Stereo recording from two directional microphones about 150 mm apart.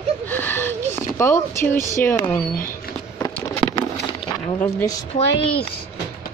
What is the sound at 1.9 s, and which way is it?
Speech, 15° left (ahead or behind).